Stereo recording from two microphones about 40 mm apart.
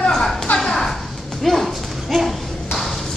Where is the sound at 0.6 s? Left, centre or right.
Centre.